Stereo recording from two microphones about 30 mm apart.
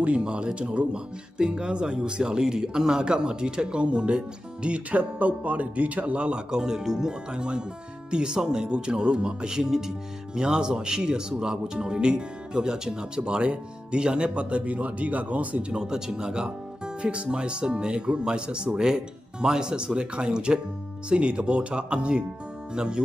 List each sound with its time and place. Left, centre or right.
0.2 s speech: right
4.9 s a man's voice: right
6.1 s speech: right; by 7.2 s centre
7.3 s speech: right
8.4 s speech: centre
8.6 s speech: right
14.4 s speech: right
15.7 s speech: right